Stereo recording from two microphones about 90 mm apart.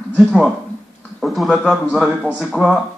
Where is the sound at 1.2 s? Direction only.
Centre (ahead or behind).